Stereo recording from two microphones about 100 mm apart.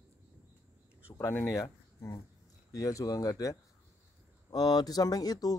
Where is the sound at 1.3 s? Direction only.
30° left (ahead or behind).